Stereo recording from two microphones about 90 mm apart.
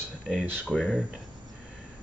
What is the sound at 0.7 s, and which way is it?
Speech, 5° left (ahead or behind).